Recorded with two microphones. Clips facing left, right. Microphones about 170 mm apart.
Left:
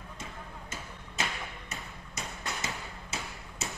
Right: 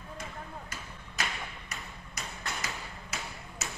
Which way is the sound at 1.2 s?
25° left (ahead or behind).